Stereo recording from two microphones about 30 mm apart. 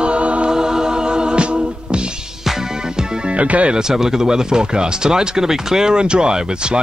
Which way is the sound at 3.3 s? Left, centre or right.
Right.